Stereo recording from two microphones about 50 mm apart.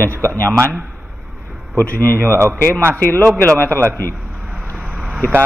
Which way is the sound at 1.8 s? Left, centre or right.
Left.